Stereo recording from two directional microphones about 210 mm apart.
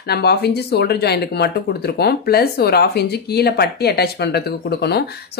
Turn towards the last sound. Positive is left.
turn(degrees=50)  # may be behind; listen again after turning